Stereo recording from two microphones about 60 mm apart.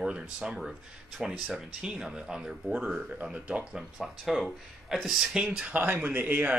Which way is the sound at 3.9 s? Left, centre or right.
Centre.